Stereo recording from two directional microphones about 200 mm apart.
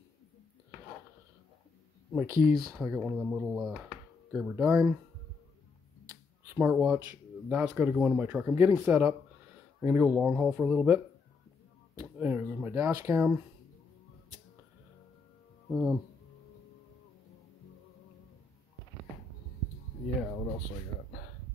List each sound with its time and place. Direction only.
2.2 s speech: 15° right (ahead or behind)
2.6 s speech: 5° right (ahead or behind)
6.5 s speech: 10° right (ahead or behind)
15.7 s speech: 10° right (ahead or behind)